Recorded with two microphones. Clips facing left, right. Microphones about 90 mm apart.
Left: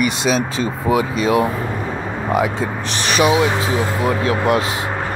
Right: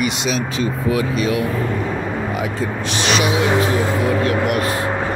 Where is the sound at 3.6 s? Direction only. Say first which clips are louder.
Right 1 dB; 10° left (ahead or behind).